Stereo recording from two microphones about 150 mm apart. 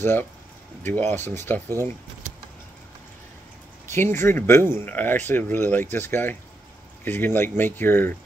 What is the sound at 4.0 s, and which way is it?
Speech, 15° left (ahead or behind).